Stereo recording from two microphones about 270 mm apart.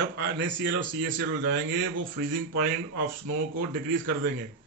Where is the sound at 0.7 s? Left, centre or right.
Right.